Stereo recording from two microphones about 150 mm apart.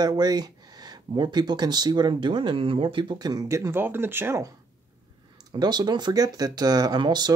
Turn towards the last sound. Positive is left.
turn(degrees=-30)  # may be behind; listen again after turning